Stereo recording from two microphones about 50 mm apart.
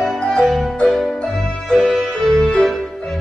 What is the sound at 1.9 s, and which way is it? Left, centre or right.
Music, centre.